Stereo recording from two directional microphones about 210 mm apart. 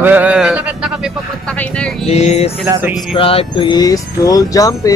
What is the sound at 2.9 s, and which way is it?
Speech, 25° left (ahead or behind).